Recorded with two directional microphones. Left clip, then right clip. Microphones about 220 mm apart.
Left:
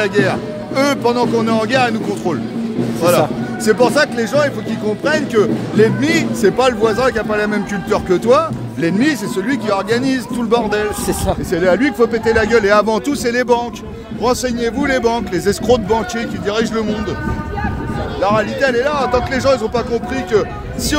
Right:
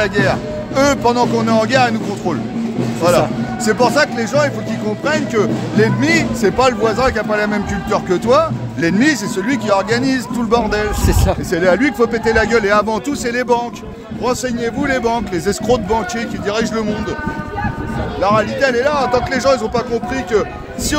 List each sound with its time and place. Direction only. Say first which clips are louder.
0.0 s speech: even; centre (ahead or behind)
12.6 s speech: left 2 dB; 20° left (ahead or behind); by 16.9 s 5° left (ahead or behind)
18.2 s speech: right 1 dB; 5° left (ahead or behind)